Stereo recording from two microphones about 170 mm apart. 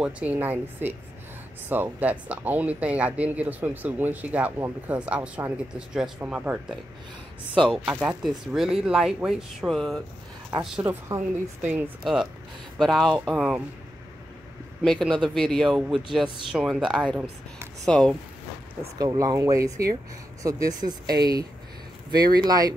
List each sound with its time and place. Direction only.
0.0 s speech: 10° right (ahead or behind)
10.6 s speech: 10° right (ahead or behind)
13.1 s speech: 10° right (ahead or behind)
14.8 s speech: centre (ahead or behind)
18.8 s speech: 20° right (ahead or behind)